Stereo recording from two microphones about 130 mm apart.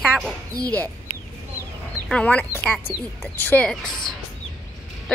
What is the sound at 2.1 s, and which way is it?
Speech, 10° left (ahead or behind).